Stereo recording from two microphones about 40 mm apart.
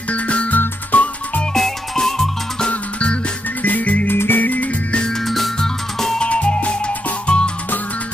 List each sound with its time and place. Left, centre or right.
0.1 s music: left
1.5 s music: centre
2.7 s music: left
3.6 s music: left
4.1 s music: left
4.4 s music: left
5.2 s music: centre
6.2 s music: left